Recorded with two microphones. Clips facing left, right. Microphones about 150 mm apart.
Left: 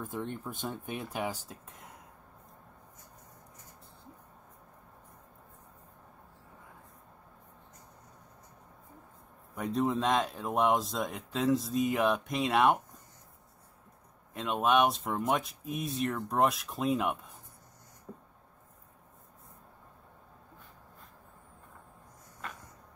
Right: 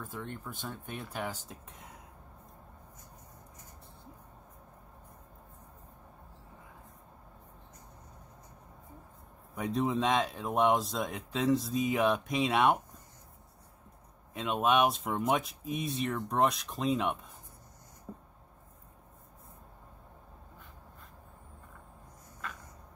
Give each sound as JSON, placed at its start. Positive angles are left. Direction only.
{"t": 0.0, "sound": "speech", "side_deg": 15}
{"t": 1.5, "sound": "speech", "side_deg": 0}
{"t": 9.6, "sound": "speech", "side_deg": 0}
{"t": 14.3, "sound": "speech", "side_deg": 0}